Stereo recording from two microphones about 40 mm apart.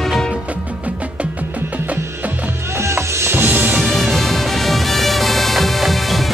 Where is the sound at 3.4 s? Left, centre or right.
Right.